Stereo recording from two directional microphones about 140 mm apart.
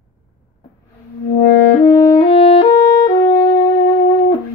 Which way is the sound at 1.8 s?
30° left (ahead or behind).